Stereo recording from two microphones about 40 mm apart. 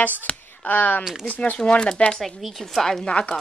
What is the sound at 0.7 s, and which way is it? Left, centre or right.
Speech, left.